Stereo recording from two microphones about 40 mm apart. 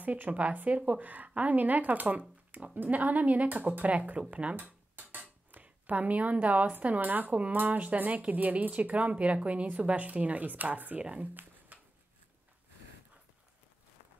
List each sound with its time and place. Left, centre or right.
0.0 s a woman's voice: right
4.6 s dishes: right
5.5 s a woman's voice: right
11.0 s speech: right
11.7 s a sound: right